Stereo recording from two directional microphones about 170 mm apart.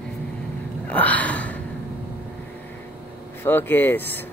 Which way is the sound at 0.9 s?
10° left (ahead or behind).